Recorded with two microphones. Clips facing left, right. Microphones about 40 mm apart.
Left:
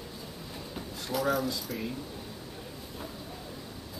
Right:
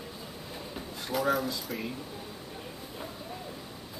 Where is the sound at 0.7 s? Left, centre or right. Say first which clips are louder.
Right 1 dB; centre.